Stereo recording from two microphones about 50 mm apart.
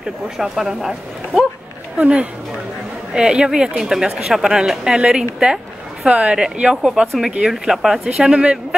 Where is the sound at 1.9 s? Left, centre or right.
Right.